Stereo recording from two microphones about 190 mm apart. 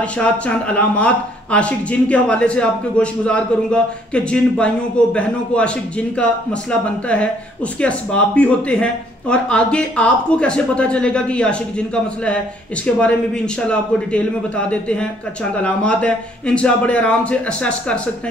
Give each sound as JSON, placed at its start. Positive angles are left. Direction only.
{"t": 0.0, "sound": "a man's voice", "side_deg": 5}